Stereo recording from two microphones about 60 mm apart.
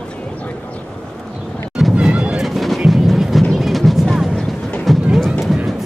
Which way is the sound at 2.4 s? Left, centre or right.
Centre.